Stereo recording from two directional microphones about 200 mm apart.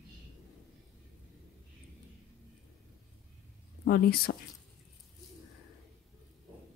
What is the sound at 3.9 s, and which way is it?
Speech, 50° left (ahead or behind).